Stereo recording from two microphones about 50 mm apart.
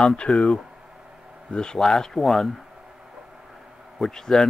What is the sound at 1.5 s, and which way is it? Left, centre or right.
Speech, centre.